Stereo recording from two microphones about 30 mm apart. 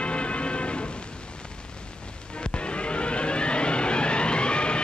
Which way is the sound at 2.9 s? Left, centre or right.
Left.